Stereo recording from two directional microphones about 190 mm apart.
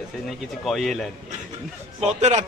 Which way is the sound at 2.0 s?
35° right (ahead or behind).